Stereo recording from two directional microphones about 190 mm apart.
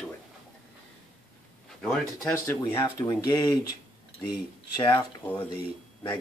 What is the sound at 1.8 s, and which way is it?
Speech, 5° left (ahead or behind).